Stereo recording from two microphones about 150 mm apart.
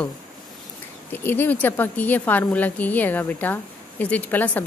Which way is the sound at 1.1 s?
15° left (ahead or behind).